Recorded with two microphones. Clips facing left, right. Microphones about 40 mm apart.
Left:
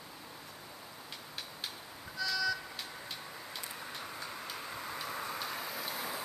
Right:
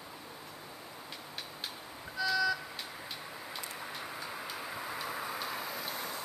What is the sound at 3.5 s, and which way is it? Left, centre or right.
Vehicle, centre.